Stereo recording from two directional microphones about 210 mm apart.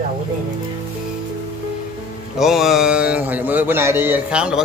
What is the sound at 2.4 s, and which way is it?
A man's voice, centre (ahead or behind).